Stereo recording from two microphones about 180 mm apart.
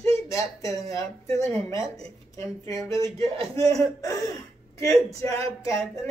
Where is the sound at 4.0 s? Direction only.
20° left (ahead or behind).